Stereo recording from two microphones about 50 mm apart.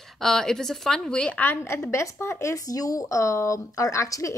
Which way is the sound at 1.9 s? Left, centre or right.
Left.